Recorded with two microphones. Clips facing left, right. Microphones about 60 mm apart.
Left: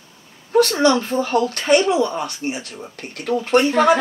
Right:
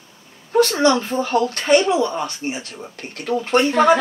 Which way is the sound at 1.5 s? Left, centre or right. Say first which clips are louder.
Even; centre.